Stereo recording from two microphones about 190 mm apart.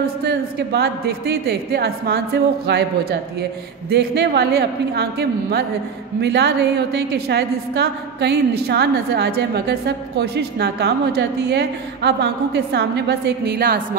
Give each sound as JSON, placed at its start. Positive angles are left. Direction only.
{"t": 0.0, "sound": "a woman's voice", "side_deg": -60}